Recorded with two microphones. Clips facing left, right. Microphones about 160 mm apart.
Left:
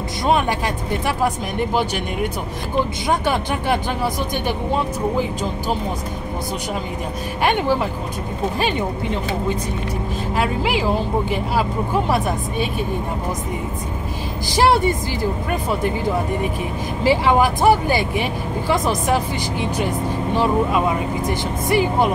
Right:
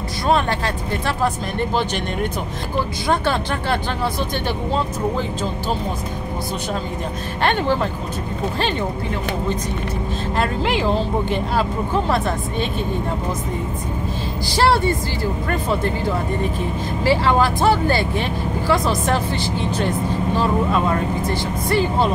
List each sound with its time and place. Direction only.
1.0 s speech: 10° left (ahead or behind)
3.1 s speech: 15° left (ahead or behind)
7.4 s speech: 10° left (ahead or behind)
10.3 s speech: 5° left (ahead or behind)
14.5 s speech: 15° left (ahead or behind)
17.0 s speech: 15° left (ahead or behind)